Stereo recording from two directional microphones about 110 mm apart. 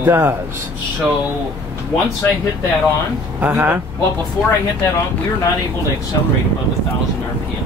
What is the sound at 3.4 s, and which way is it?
Speech, 15° right (ahead or behind).